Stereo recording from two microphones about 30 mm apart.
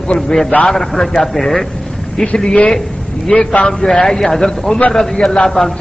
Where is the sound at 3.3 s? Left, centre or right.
Left.